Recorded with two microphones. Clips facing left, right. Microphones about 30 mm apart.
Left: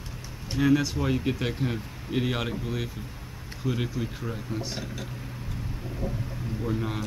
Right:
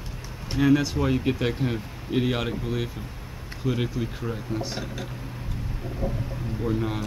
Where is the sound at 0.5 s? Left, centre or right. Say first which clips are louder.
Right 2 dB; centre.